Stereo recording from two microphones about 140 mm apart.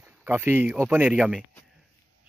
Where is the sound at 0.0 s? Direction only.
15° right (ahead or behind).